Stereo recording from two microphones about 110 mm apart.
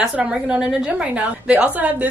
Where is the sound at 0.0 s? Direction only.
10° right (ahead or behind).